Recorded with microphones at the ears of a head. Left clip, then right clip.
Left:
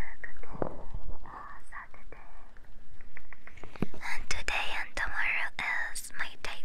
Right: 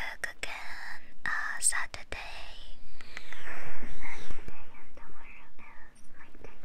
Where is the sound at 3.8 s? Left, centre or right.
Left.